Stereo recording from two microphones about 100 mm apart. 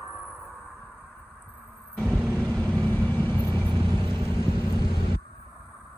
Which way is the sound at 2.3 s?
15° left (ahead or behind).